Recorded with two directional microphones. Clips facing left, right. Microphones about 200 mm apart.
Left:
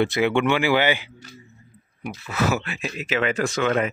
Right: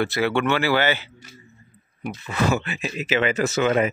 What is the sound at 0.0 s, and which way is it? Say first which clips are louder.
Speech: left 2 dB; 20° left (ahead or behind).